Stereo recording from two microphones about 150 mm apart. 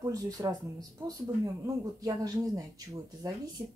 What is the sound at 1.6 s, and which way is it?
Speech, 20° right (ahead or behind).